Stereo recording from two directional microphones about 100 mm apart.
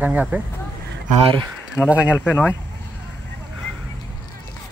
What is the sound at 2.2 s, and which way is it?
Speech, 20° left (ahead or behind).